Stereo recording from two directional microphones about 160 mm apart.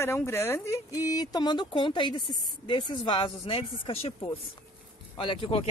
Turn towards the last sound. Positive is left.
turn(degrees=35)  # may be behind; listen again after turning